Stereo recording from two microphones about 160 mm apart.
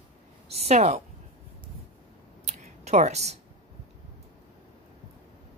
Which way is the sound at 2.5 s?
45° right (ahead or behind).